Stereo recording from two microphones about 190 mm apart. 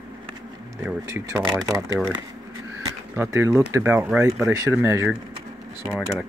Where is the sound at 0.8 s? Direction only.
10° right (ahead or behind).